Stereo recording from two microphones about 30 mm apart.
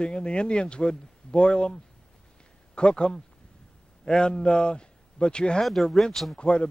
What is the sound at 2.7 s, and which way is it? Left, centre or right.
Speech, left.